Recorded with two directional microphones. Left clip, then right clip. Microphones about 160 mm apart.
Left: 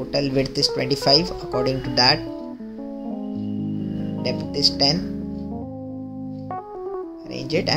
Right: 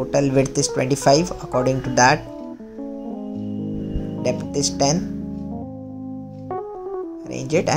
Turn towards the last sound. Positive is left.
turn(degrees=-10)  # may be behind; listen again after turning